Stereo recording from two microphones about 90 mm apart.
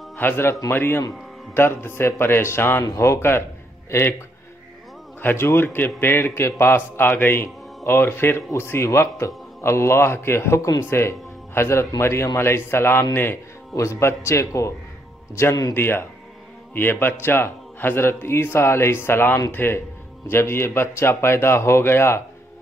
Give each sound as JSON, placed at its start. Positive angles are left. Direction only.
{"t": 0.2, "sound": "a man's voice", "side_deg": 25}
{"t": 5.2, "sound": "a man's voice", "side_deg": 25}
{"t": 15.7, "sound": "a man's voice", "side_deg": 25}